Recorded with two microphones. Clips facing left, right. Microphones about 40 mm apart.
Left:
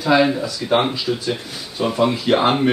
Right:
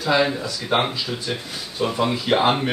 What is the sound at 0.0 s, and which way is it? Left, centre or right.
Speech, centre.